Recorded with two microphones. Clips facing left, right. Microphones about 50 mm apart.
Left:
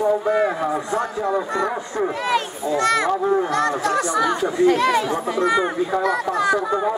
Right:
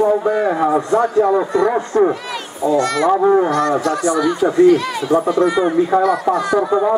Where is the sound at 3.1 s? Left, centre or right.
Right.